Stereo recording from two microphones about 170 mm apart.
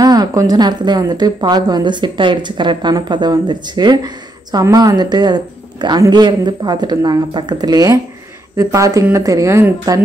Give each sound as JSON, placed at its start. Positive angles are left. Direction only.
{"t": 0.0, "sound": "a woman's voice", "side_deg": -25}